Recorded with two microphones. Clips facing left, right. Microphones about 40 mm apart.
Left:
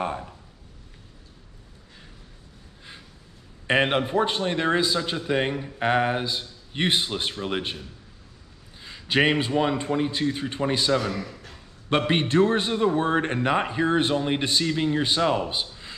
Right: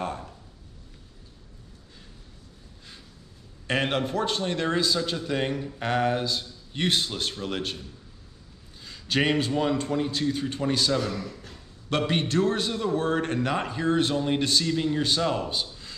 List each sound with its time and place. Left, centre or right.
0.0 s a man's voice: centre
3.6 s a man's voice: left